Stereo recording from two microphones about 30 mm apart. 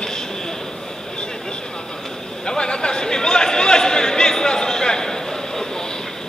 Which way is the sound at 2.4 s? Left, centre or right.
Left.